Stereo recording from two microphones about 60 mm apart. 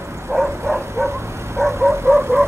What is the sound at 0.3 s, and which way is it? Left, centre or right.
Bow-wow, right.